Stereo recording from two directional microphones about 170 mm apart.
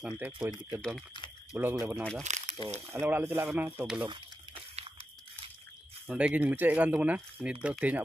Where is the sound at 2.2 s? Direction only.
45° right (ahead or behind).